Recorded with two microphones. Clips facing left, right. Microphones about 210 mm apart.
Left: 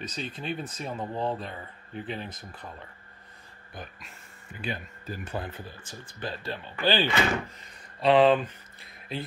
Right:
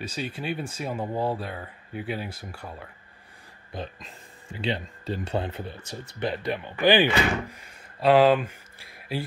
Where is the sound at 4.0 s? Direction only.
90° right; by 6.1 s 70° right (ahead or behind).